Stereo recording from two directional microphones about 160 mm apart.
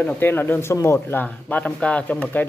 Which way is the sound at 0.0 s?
10° left (ahead or behind).